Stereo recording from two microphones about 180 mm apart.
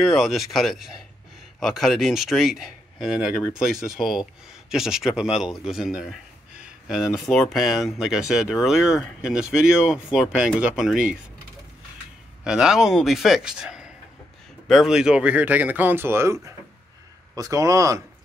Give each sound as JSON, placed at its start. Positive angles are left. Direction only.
{"t": 0.0, "sound": "speech", "side_deg": 0}
{"t": 12.4, "sound": "speech", "side_deg": -5}